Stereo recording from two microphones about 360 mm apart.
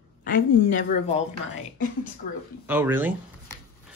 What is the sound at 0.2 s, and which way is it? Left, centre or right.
Speech, left.